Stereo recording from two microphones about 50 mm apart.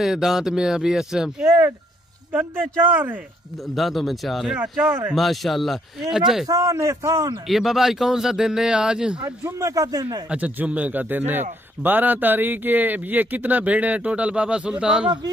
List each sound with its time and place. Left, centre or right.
0.0 s speech: centre
1.4 s speech: right
2.3 s a man's voice: right
3.7 s speech: centre
4.6 s speech: right
5.1 s speech: centre
6.0 s speech: centre
6.6 s a man's voice: right
7.4 s speech: centre
10.3 s a man's voice: right